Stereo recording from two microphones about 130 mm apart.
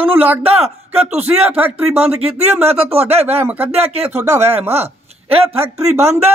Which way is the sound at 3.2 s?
15° right (ahead or behind).